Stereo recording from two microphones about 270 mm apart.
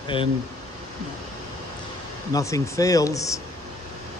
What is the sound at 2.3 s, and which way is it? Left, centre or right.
A man's voice, centre.